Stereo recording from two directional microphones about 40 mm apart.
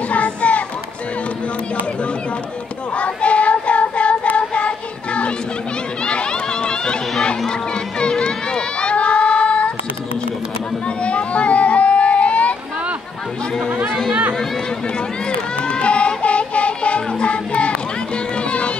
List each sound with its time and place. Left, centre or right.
0.1 s music: left
3.0 s child singing: left
6.0 s run: left
11.1 s a sound: left
15.7 s music: left